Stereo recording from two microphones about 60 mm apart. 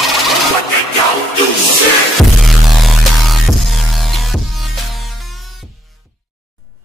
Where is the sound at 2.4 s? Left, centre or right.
Centre.